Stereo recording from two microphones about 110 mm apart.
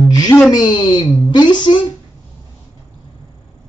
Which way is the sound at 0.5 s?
40° left (ahead or behind).